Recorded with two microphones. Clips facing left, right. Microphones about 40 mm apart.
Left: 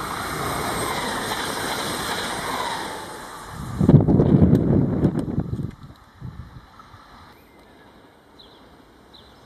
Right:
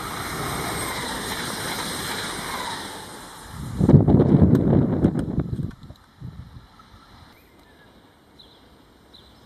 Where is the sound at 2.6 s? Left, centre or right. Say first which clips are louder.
Left 4 dB; left.